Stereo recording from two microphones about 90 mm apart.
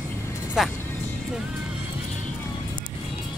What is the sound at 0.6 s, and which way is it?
Speech, 5° right (ahead or behind).